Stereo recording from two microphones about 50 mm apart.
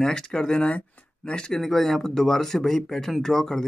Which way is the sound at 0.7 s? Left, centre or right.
Left.